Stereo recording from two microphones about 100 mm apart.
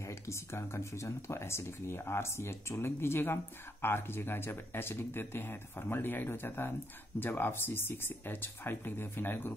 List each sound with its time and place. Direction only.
0.3 s speech: 25° left (ahead or behind)